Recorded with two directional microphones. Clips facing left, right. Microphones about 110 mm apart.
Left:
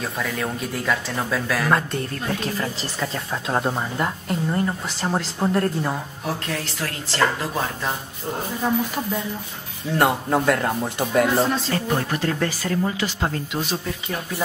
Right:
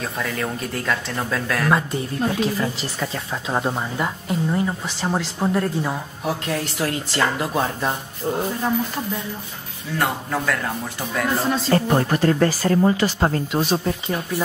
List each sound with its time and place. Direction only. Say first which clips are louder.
0.0 s speech: even; centre (ahead or behind)
6.8 s a woman's voice: right 9 dB; 20° right (ahead or behind)
8.3 s speech: right 2 dB; centre (ahead or behind)
9.9 s a man's voice: left 4 dB; 25° left (ahead or behind)
11.3 s speech: left 1 dB; centre (ahead or behind)
11.7 s speech: right 5 dB; 40° right (ahead or behind)